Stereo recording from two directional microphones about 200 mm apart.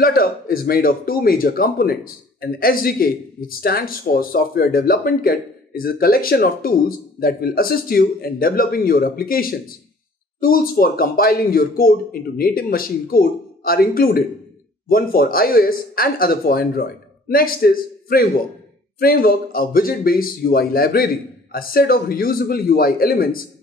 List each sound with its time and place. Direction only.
0.0 s a man's voice: 45° left (ahead or behind)